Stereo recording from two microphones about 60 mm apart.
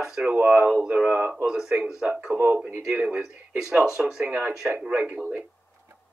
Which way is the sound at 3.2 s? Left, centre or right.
Centre.